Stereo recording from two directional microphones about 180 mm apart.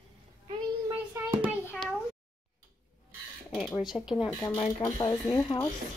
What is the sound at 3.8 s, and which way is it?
Speech, 5° right (ahead or behind).